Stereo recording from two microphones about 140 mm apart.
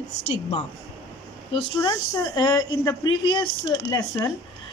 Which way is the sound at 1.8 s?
30° left (ahead or behind).